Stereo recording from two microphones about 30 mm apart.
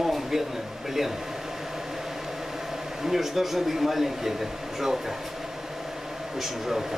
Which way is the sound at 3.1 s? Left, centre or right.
Centre.